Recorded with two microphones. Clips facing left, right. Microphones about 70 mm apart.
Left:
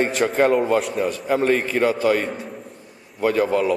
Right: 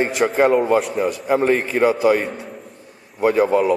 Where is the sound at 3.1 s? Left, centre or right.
Centre.